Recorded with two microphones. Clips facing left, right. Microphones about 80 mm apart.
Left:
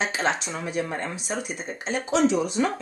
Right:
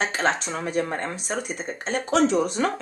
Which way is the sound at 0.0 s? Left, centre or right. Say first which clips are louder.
Right 2 dB; right.